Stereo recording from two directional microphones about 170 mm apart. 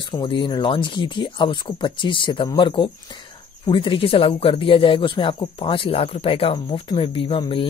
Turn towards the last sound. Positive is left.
turn(degrees=30)  # may be behind; listen again after turning